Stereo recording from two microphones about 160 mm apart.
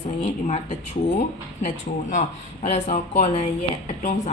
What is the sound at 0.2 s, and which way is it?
Speech, 45° left (ahead or behind).